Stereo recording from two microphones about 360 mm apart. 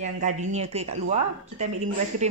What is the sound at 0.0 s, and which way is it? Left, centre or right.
A woman's voice, centre.